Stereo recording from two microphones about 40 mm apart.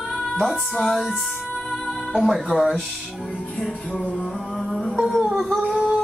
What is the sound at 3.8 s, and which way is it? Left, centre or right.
Music, left.